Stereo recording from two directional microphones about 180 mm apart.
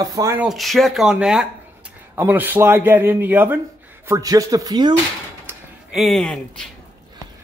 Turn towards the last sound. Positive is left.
turn(degrees=5)  # may be behind; listen again after turning